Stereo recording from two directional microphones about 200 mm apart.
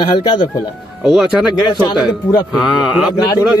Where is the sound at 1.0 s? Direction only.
Centre (ahead or behind).